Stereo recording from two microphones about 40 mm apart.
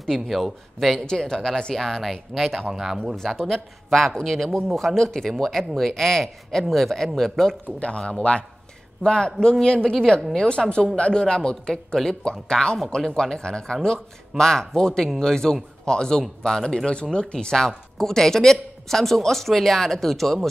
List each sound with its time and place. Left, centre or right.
0.3 s speech: centre
1.0 s speech: centre
2.7 s speech: centre
3.3 s speech: centre
8.1 s speech: left; by 20.3 s centre